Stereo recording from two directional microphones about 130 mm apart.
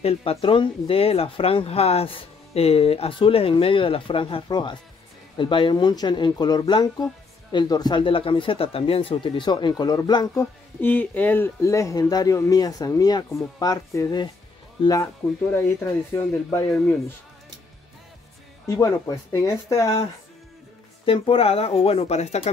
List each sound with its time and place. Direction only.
0.0 s speech: 50° left (ahead or behind); by 14.3 s 30° left (ahead or behind)
14.8 s speech: 45° left (ahead or behind)
15.5 s speech: 20° left (ahead or behind)
18.8 s speech: 25° left (ahead or behind)
21.0 s speech: 45° left (ahead or behind)